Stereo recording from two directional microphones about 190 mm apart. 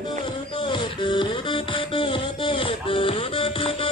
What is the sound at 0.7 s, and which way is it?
Music, 25° left (ahead or behind).